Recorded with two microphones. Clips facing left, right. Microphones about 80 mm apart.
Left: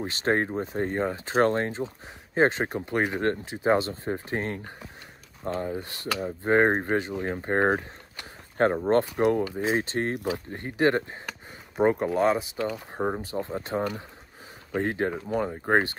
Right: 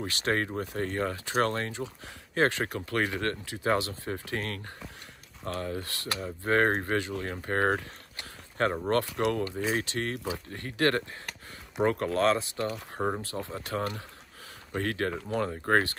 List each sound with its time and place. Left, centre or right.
0.0 s speech: left